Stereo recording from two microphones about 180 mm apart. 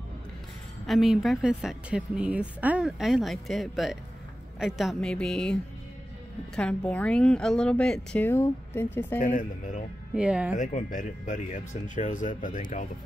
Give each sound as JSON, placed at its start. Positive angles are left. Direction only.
{"t": 0.8, "sound": "a woman's voice", "side_deg": 0}
{"t": 9.2, "sound": "speech", "side_deg": 45}
{"t": 10.1, "sound": "a woman's voice", "side_deg": -5}
{"t": 10.5, "sound": "speech", "side_deg": 45}